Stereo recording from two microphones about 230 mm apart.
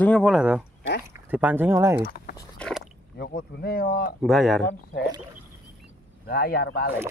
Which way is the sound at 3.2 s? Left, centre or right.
Left.